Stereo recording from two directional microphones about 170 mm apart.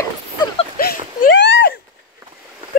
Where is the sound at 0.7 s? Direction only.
75° left (ahead or behind).